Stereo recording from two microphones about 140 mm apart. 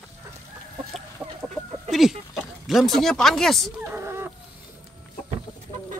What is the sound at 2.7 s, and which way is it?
Speech, centre (ahead or behind).